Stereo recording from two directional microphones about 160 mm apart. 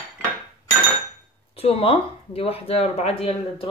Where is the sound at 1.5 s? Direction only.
40° left (ahead or behind).